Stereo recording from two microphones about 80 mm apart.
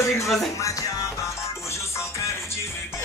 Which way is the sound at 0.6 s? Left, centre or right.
Left.